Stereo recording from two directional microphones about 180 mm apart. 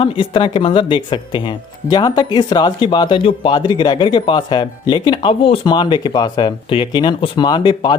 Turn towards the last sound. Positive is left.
turn(degrees=25)  # may be behind; listen again after turning